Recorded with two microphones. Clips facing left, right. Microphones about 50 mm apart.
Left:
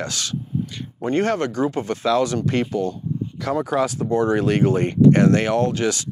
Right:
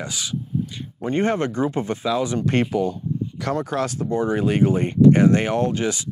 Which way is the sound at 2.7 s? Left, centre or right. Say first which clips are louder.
Right 1 dB; centre.